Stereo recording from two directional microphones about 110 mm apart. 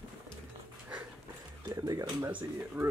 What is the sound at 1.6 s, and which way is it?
Music, 35° right (ahead or behind).